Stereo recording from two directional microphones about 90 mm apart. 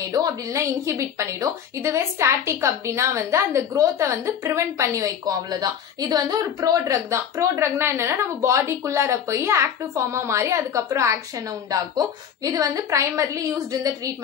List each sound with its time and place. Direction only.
0.1 s a woman's voice: 40° right (ahead or behind)
11.7 s a woman's voice: 50° right (ahead or behind)